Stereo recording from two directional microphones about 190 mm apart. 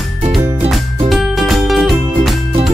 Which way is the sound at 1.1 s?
Centre (ahead or behind).